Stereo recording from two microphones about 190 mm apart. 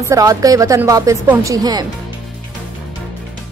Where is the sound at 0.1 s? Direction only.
15° right (ahead or behind).